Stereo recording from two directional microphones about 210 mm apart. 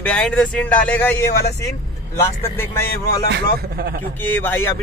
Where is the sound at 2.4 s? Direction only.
10° left (ahead or behind).